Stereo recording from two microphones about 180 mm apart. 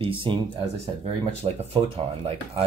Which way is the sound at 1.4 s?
35° right (ahead or behind).